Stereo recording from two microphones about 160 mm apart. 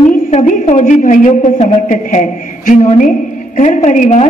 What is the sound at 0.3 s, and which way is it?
A woman's voice, 45° left (ahead or behind).